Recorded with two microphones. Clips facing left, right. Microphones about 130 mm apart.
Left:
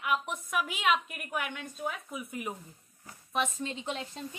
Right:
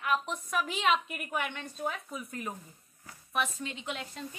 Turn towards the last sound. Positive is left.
turn(degrees=35)  # may be behind; listen again after turning